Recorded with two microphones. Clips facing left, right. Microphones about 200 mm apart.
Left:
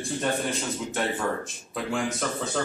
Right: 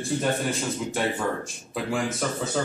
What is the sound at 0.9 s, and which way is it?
Speech, centre (ahead or behind).